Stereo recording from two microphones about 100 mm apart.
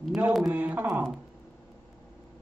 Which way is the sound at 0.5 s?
15° right (ahead or behind).